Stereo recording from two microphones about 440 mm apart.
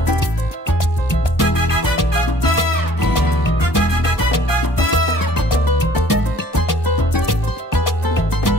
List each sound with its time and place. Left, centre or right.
1.4 s music: left
4.9 s music: left